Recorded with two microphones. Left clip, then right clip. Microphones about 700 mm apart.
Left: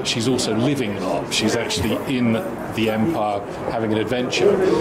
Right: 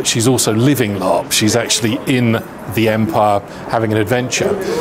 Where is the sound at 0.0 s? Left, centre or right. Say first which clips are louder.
Right 6 dB; right.